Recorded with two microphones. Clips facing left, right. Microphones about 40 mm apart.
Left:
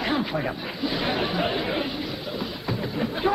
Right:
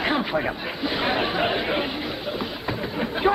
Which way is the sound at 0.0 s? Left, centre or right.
Right.